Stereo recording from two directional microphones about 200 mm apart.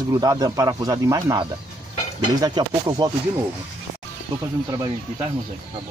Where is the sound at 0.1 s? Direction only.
20° right (ahead or behind).